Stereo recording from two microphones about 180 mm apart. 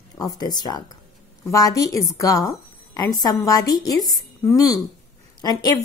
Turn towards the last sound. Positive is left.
turn(degrees=20)  # may be behind; listen again after turning